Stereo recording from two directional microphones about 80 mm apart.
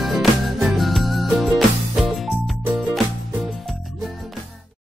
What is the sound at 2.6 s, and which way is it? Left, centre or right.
Music, right.